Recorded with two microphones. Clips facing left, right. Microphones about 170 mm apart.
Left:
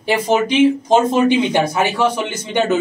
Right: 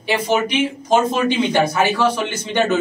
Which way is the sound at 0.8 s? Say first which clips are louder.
Left 3 dB; 20° left (ahead or behind).